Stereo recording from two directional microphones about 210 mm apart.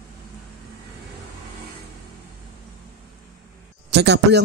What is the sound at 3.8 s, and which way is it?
Speech, 55° right (ahead or behind).